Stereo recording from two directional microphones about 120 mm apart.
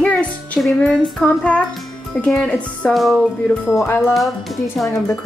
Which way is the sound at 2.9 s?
Centre (ahead or behind).